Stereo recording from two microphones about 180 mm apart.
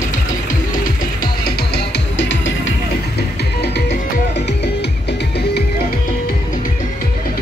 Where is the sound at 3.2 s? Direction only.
65° left (ahead or behind).